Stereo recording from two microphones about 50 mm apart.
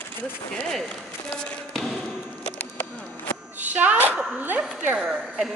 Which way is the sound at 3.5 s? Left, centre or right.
Right.